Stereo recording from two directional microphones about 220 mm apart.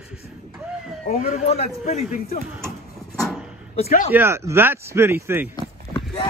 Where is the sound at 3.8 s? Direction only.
30° left (ahead or behind).